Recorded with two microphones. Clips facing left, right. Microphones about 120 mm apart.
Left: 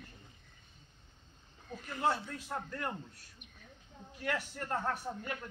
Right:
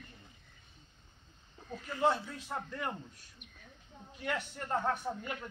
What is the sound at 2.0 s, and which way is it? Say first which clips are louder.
Speech: right 3 dB; centre (ahead or behind).